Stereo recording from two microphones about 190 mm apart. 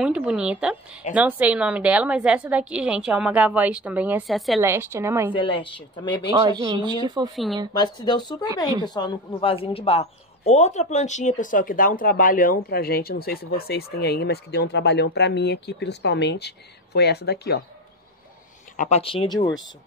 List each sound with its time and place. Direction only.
0.0 s a woman's voice: 5° right (ahead or behind)
4.6 s a woman's voice: 15° right (ahead or behind)
5.3 s speech: 25° left (ahead or behind)
6.3 s speech: 20° right (ahead or behind)
7.8 s speech: 20° left (ahead or behind); by 17.6 s 55° left (ahead or behind)
18.8 s speech: 35° left (ahead or behind)